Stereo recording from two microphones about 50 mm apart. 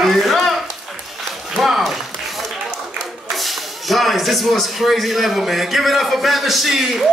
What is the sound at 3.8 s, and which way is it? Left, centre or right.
A man's voice, centre.